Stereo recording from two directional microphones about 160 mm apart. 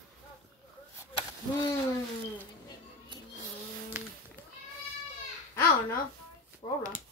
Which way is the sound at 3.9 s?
15° right (ahead or behind).